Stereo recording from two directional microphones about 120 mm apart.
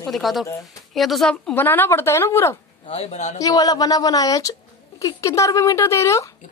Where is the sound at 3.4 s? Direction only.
30° left (ahead or behind).